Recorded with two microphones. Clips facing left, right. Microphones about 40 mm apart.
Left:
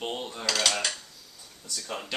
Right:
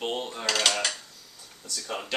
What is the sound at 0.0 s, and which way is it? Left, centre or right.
Mechanisms, centre.